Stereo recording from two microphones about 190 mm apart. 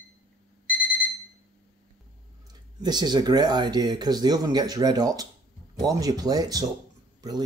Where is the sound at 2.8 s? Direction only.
20° right (ahead or behind).